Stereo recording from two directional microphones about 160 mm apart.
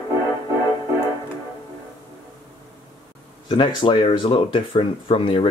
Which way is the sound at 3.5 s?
30° left (ahead or behind).